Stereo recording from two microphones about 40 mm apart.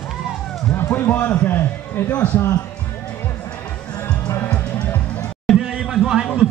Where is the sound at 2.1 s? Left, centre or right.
Left.